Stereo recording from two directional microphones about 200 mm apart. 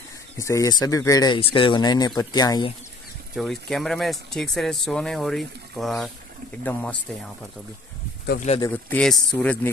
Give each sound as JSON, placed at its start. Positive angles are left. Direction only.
{"t": 0.4, "sound": "speech", "side_deg": 15}
{"t": 3.3, "sound": "speech", "side_deg": 0}
{"t": 8.5, "sound": "speech", "side_deg": 15}
{"t": 8.9, "sound": "speech", "side_deg": 5}